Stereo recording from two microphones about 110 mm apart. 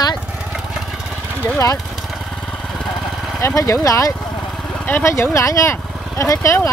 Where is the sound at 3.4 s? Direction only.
25° left (ahead or behind).